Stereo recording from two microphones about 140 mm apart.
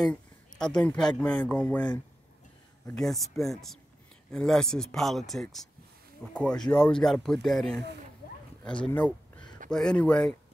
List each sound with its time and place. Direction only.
0.0 s speech: 5° left (ahead or behind)
8.8 s a sound: 10° left (ahead or behind)
9.7 s speech: 5° left (ahead or behind)